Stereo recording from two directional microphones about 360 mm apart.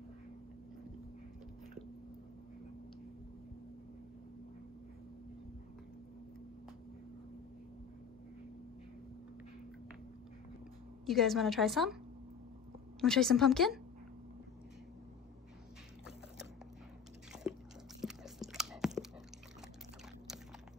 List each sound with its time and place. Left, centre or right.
11.1 s a woman's voice: centre
13.0 s a woman's voice: centre
18.0 s a sound: centre